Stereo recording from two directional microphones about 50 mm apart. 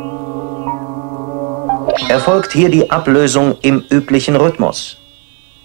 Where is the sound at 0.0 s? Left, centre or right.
Right.